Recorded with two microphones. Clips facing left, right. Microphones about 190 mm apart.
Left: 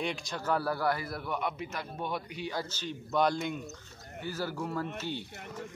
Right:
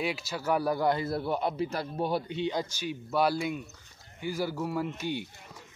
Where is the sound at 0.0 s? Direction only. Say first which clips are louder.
Right 2 dB; 5° right (ahead or behind); by 2.6 s 25° right (ahead or behind).